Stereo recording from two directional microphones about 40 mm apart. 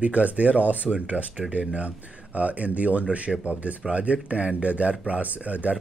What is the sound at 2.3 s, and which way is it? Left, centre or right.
Speech, right.